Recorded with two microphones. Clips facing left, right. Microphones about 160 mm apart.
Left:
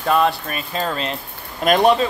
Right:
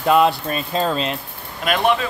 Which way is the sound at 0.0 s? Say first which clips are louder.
Right 2 dB; 20° right (ahead or behind).